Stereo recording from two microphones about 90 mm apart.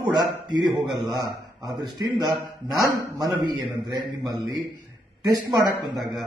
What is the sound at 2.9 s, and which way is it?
Speech, 50° right (ahead or behind).